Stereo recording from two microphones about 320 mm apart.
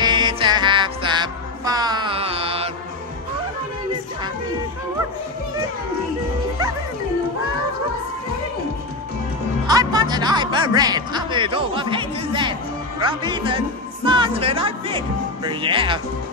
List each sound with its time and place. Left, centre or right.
0.0 s music: centre
9.7 s speech: centre